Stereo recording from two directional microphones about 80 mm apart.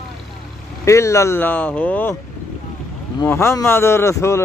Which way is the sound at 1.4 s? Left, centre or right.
Centre.